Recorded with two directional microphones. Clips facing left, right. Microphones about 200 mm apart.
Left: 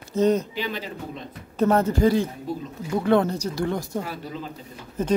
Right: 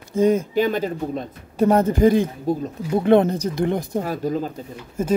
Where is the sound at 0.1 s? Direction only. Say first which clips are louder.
Right 3 dB; 10° right (ahead or behind).